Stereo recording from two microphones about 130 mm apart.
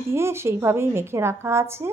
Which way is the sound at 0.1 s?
20° right (ahead or behind).